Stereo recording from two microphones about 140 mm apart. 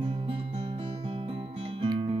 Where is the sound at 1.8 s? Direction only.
40° right (ahead or behind).